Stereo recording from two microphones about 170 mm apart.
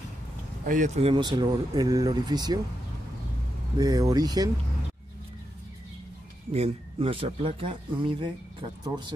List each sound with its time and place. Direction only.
0.7 s speech: 45° right (ahead or behind)
1.1 s speech: 25° right (ahead or behind)
3.7 s speech: 20° right (ahead or behind)
6.5 s speech: 35° right (ahead or behind)